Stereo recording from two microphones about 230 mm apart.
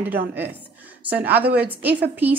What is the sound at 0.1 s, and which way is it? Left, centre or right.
Speech, centre.